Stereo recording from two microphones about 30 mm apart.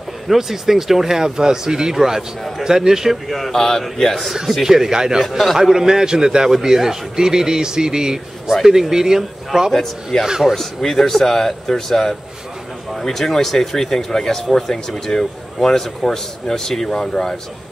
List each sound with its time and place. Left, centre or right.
0.3 s speech: centre
3.3 s speech: centre
3.5 s speech: centre
4.6 s a man's voice: centre
9.7 s speech: centre